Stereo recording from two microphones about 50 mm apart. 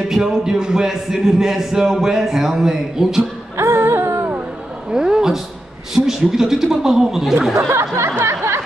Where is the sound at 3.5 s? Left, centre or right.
Right.